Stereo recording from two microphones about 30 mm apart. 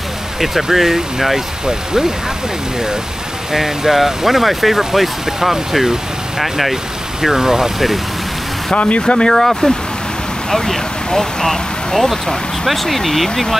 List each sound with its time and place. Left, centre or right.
0.4 s speech: centre
3.5 s speech: centre
8.7 s speech: left
9.0 s speech: left
9.3 s speech: centre